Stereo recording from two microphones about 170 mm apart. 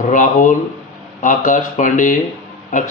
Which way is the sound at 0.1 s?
50° left (ahead or behind).